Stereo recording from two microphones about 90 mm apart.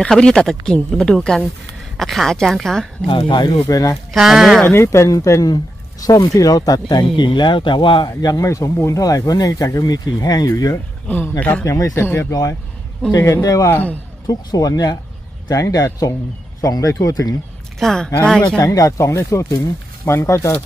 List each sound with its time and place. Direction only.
0.0 s speech: 10° left (ahead or behind)
3.1 s speech: 65° left (ahead or behind)
3.5 s speech: 40° left (ahead or behind)
4.1 s speech: 5° right (ahead or behind)
4.6 s speech: 30° left (ahead or behind)
7.2 s speech: 60° left (ahead or behind)
8.1 s speech: 40° left (ahead or behind)
11.1 s speech: 20° left (ahead or behind)
11.6 s speech: 35° left (ahead or behind)
17.7 s speech: 5° left (ahead or behind)
18.6 s speech: 35° left (ahead or behind)